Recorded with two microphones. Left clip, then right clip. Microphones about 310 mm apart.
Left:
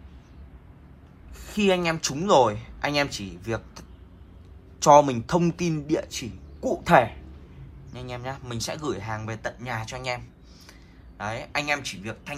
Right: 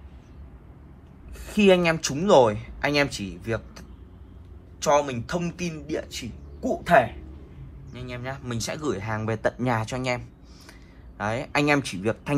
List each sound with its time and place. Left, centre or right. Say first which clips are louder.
1.3 s a man's voice: right 4 dB; centre